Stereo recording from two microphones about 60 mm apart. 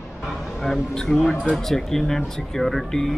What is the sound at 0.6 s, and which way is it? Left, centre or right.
A man's voice, centre.